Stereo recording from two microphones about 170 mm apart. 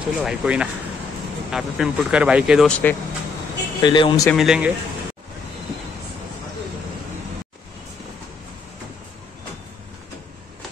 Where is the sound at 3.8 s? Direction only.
25° left (ahead or behind).